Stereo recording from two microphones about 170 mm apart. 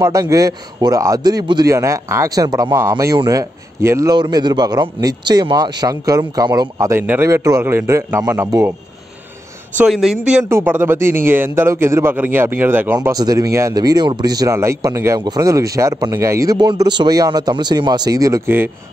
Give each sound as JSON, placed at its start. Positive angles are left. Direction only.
{"t": 0.0, "sound": "a man's voice", "side_deg": -20}
{"t": 9.8, "sound": "speech", "side_deg": 0}
{"t": 13.1, "sound": "a man's voice", "side_deg": -20}